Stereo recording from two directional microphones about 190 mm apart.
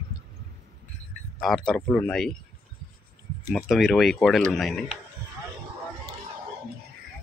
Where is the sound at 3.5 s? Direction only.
Centre (ahead or behind).